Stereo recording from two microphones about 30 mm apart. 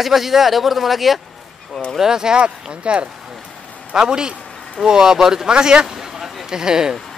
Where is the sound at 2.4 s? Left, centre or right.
Right.